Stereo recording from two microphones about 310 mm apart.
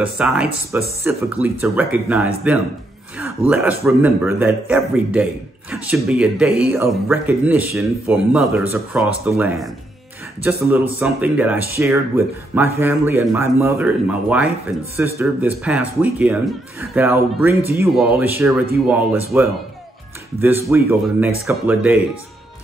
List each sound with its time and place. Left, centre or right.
0.0 s a man's voice: centre